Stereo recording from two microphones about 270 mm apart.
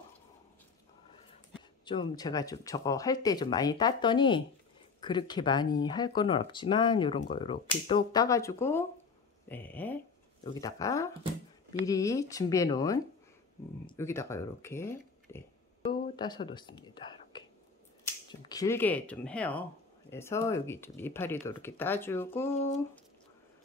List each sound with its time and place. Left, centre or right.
1.9 s speech: centre
15.9 s whispering: centre
18.0 s speech: centre